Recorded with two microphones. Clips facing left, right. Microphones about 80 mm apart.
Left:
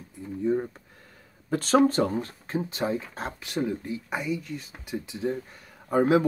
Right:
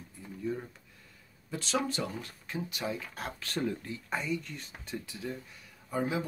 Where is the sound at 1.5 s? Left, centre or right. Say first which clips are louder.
Left 12 dB; left.